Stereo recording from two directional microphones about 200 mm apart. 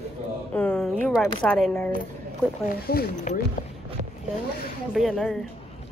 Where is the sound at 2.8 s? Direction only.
50° left (ahead or behind).